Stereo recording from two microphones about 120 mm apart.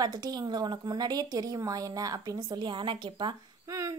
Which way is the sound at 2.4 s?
40° right (ahead or behind).